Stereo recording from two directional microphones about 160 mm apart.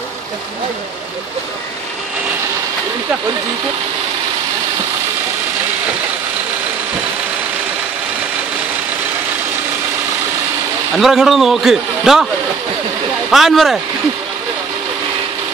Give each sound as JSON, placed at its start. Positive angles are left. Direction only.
{"t": 11.0, "sound": "a man's voice", "side_deg": 0}
{"t": 13.3, "sound": "a man's voice", "side_deg": 0}